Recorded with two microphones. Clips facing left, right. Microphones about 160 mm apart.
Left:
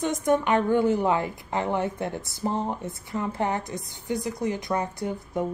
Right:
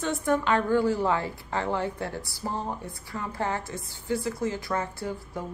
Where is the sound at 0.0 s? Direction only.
15° left (ahead or behind).